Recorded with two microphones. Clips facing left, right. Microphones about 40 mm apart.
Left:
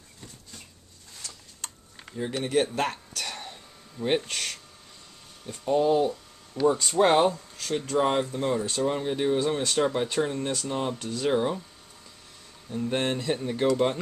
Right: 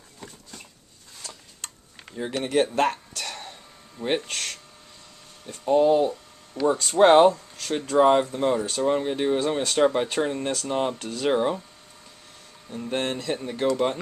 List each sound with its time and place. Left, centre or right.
1.2 s tick-tock: centre
2.4 s a sound: centre
4.0 s speech: centre
7.3 s a sound: centre
7.8 s speech: centre
11.0 s speech: centre
11.2 s speech: centre
12.6 s speech: centre